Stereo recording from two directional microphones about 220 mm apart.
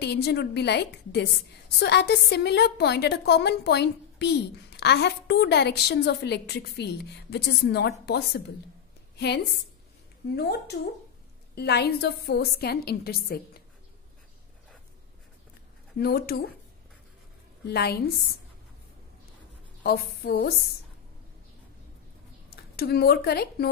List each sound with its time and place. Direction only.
0.0 s a woman's voice: 50° left (ahead or behind)
9.2 s a woman's voice: 50° left (ahead or behind)
16.0 s a woman's voice: 45° left (ahead or behind)
17.6 s a woman's voice: 45° left (ahead or behind)
19.8 s a woman's voice: 45° left (ahead or behind)
22.8 s a woman's voice: 45° left (ahead or behind)